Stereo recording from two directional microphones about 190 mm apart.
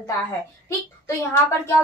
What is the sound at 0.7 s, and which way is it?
Speech, 15° left (ahead or behind).